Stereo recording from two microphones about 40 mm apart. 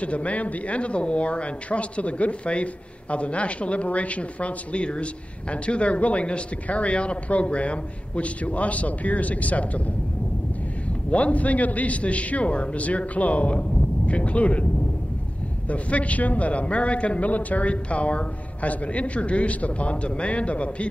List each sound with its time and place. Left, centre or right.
0.0 s speech: left
11.1 s speech: left
15.7 s speech: left